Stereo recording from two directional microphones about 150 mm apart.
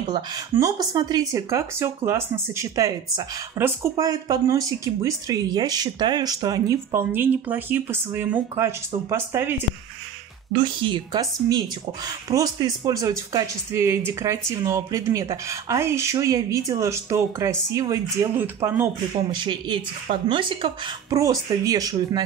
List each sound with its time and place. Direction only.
0.1 s speech: 25° right (ahead or behind)
10.5 s a woman's voice: 30° right (ahead or behind); by 18.9 s 15° right (ahead or behind)
19.3 s a woman's voice: 30° right (ahead or behind)
21.1 s speech: 20° right (ahead or behind)